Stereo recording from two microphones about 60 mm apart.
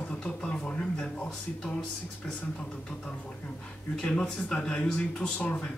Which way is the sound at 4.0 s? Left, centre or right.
Centre.